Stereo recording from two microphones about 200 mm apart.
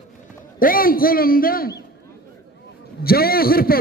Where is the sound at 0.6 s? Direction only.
45° left (ahead or behind).